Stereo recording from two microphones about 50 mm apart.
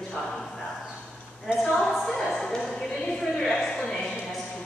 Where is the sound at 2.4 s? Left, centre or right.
Centre.